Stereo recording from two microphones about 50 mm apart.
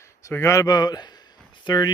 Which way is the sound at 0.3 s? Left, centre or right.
Left.